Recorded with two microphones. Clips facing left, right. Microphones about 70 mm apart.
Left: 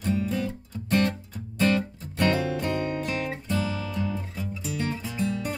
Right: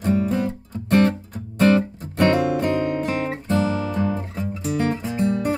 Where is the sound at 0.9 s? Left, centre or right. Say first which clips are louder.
Right 7 dB; right.